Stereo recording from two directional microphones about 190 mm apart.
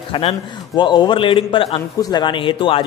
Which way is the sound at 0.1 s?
25° left (ahead or behind).